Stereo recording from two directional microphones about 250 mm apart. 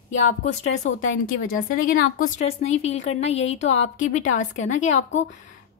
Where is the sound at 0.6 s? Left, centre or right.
Left.